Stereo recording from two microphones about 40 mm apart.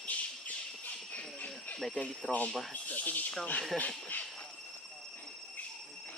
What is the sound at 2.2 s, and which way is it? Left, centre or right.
Speech, centre.